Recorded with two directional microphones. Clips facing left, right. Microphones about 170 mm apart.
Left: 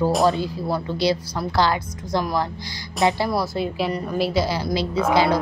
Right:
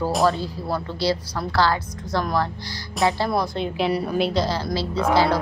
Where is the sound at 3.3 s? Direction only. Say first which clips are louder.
Even; 5° left (ahead or behind).